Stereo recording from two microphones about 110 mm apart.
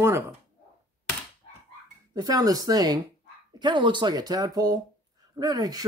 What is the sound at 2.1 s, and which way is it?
Speech, 35° right (ahead or behind).